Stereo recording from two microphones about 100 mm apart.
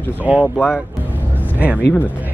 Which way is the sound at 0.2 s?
15° right (ahead or behind).